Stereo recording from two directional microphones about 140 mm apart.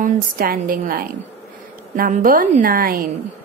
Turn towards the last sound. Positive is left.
turn(degrees=-90)